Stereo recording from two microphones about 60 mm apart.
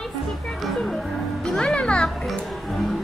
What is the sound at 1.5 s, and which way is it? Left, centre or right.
Music, centre.